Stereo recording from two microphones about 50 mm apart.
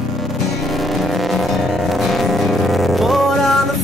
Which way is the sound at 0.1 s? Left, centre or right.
Centre.